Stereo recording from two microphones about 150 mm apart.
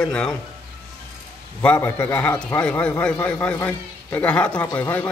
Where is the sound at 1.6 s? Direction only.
10° left (ahead or behind).